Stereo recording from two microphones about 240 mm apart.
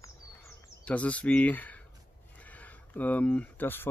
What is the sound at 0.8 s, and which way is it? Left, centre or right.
Speech, centre.